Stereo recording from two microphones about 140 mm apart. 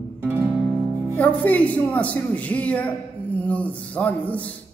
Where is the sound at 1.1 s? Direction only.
10° left (ahead or behind).